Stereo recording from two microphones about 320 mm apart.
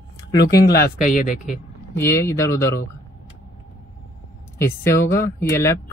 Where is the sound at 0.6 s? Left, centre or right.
Left.